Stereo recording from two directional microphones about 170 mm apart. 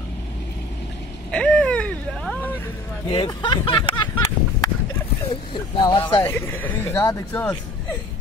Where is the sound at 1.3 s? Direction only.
5° left (ahead or behind).